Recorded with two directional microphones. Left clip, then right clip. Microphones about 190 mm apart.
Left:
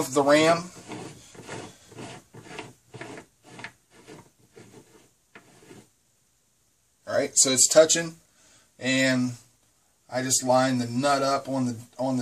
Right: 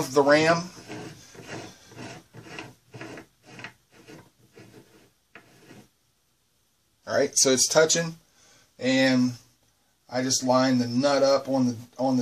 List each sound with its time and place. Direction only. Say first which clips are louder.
0.1 s speech: right 1 dB; 10° right (ahead or behind)
7.1 s speech: right 2 dB; 20° right (ahead or behind)